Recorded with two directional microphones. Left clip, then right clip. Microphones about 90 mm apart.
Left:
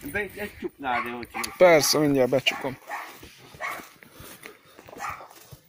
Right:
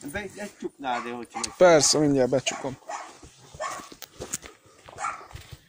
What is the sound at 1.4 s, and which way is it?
Speech, 45° right (ahead or behind).